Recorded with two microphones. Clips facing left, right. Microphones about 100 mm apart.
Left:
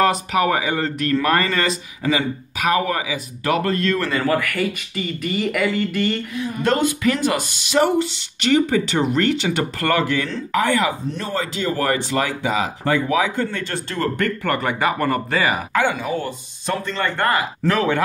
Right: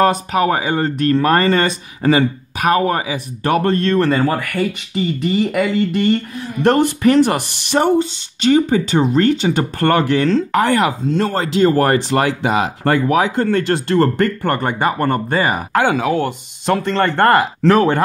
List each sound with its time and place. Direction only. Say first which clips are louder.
0.0 s speech: right 3 dB; 35° right (ahead or behind)
6.3 s speech: right 5 dB; 50° right (ahead or behind)
8.5 s speech: right 1 dB; 30° right (ahead or behind)
10.6 s speech: right 4 dB; 50° right (ahead or behind)
13.5 s speech: right 11 dB; 75° right (ahead or behind)
14.2 s speech: right 4 dB; 35° right (ahead or behind)
15.7 s speech: right 5 dB; 80° right; by 18.0 s 50° right (ahead or behind)